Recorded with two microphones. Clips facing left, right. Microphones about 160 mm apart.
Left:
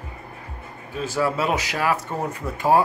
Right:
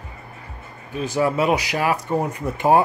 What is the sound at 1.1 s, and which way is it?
Speech, 15° right (ahead or behind).